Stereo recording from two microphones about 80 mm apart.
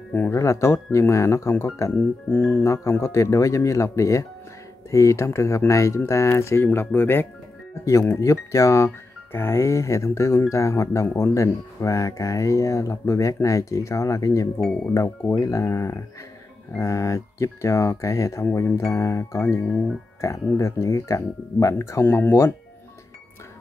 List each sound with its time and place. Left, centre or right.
0.3 s speech: left
2.0 s music: left
2.6 s speech: left
7.8 s speech: left
22.0 s music: left